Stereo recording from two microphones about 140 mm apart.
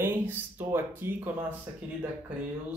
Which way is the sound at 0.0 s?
15° right (ahead or behind).